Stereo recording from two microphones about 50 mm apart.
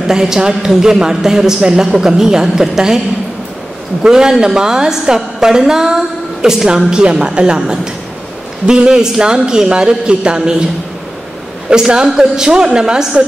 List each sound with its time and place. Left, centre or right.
0.0 s a woman's voice: centre
4.0 s a woman's voice: centre
11.7 s a woman's voice: centre